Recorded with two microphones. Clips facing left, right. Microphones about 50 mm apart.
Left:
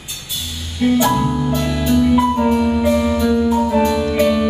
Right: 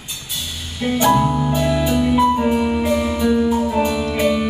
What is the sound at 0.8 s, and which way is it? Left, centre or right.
Music, centre.